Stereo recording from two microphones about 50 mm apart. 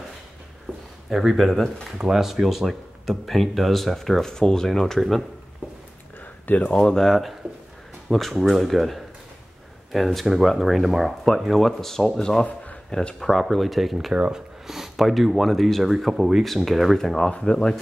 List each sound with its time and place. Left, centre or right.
1.1 s speech: centre
6.4 s speech: left
6.7 s speech: centre
14.1 s speech: right
14.7 s speech: centre
17.3 s speech: centre